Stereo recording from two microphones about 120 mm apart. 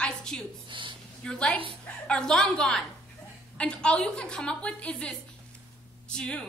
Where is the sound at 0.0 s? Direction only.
5° left (ahead or behind).